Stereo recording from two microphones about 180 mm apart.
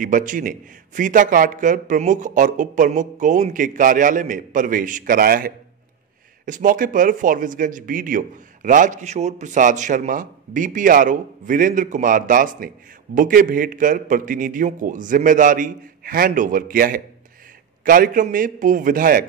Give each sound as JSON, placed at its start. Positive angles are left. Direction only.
{"t": 0.0, "sound": "speech", "side_deg": -45}